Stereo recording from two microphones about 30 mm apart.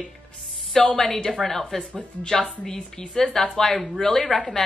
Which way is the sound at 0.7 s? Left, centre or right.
Centre.